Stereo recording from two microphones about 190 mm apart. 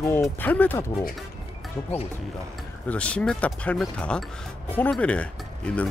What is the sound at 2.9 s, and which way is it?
Speech, 5° left (ahead or behind).